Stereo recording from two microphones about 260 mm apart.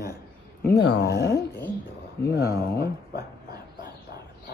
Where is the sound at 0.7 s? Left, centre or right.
Left.